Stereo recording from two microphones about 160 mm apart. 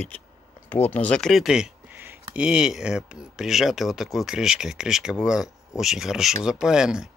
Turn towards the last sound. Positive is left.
turn(degrees=-5)  # may be behind; listen again after turning